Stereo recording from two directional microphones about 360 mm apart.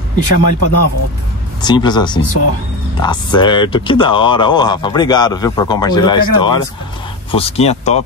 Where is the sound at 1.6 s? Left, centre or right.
Centre.